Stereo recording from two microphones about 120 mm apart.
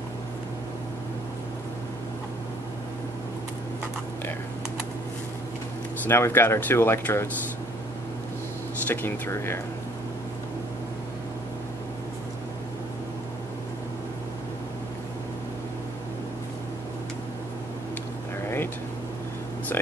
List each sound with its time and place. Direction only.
6.0 s speech: 20° left (ahead or behind)
8.8 s speech: 15° left (ahead or behind)